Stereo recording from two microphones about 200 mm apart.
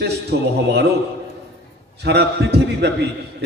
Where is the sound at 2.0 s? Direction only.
55° right (ahead or behind).